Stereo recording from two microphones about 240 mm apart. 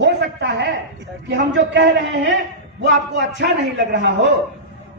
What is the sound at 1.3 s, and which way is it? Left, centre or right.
A man's voice, right.